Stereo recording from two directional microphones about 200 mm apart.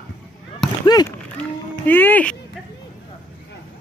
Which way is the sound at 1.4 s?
10° left (ahead or behind).